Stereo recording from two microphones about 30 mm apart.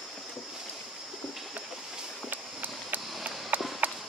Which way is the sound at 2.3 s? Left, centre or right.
Right.